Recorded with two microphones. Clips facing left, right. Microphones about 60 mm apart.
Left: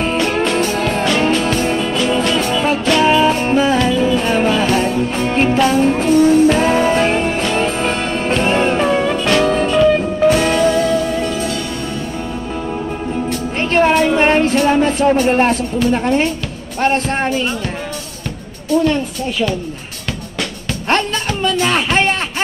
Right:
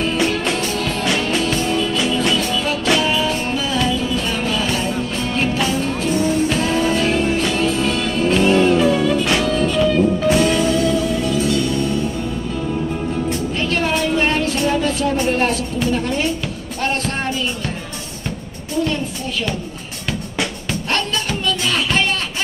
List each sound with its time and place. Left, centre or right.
0.3 s music: left
13.6 s music: left
15.2 s speech: left
16.8 s music: left
20.9 s a sound: left